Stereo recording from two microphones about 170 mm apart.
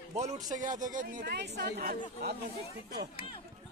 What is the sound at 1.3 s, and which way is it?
Speech, 80° right.